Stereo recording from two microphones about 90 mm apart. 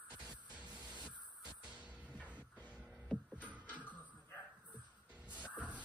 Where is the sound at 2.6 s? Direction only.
15° left (ahead or behind).